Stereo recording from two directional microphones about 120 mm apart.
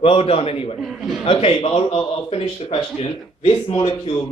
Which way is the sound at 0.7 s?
Centre (ahead or behind).